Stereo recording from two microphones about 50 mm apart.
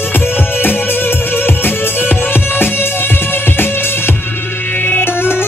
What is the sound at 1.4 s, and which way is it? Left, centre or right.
Music, left.